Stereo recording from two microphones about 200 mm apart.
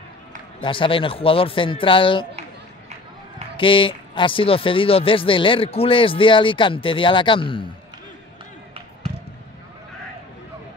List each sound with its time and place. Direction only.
0.6 s speech: 25° left (ahead or behind)
3.5 s speech: 25° left (ahead or behind)